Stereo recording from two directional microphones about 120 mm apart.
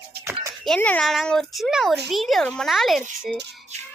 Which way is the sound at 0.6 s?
10° left (ahead or behind).